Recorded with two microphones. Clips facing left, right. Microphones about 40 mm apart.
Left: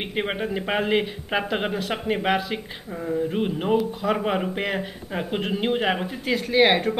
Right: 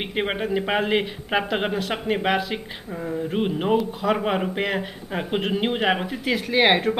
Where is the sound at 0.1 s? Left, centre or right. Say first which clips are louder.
Right 3 dB; centre.